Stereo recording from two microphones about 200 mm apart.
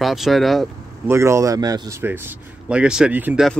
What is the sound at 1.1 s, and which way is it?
A man's voice, 15° right (ahead or behind).